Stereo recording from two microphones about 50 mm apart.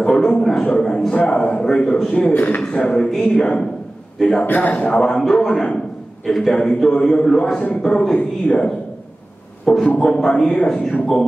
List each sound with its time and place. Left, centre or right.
0.0 s a man's voice: centre
2.3 s speech: left
2.7 s a man's voice: left
3.0 s speech: centre
4.5 s speech: left
4.8 s a man's voice: centre
9.9 s speech: centre